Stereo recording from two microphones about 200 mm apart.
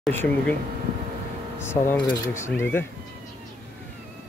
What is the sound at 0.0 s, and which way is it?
Speech, 10° left (ahead or behind).